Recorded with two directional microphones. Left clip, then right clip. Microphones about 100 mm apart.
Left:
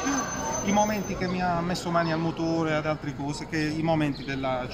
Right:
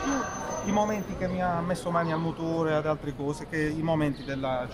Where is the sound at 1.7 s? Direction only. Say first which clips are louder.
Left 1 dB; 20° right (ahead or behind).